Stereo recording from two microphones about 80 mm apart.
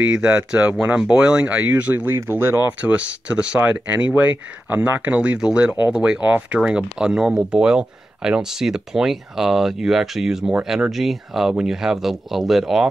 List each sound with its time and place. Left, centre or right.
0.2 s speech: centre
2.1 s speech: right
2.8 s speech: centre